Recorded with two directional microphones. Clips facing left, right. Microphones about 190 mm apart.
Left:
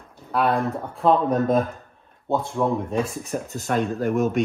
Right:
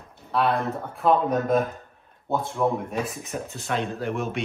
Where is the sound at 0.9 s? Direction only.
30° left (ahead or behind).